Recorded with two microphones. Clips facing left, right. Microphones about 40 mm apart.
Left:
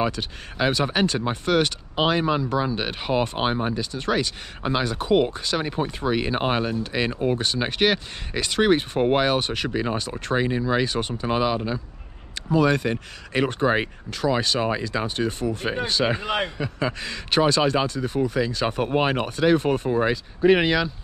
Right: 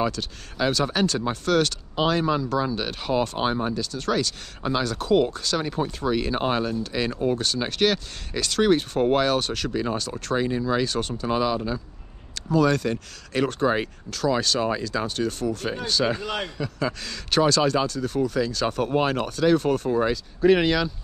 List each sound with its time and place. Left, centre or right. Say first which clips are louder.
0.0 s speech: left 1 dB; left